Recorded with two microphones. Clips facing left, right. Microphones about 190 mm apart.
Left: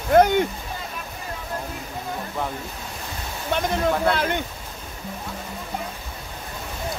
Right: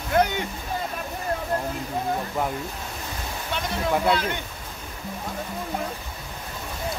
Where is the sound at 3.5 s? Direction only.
55° left (ahead or behind).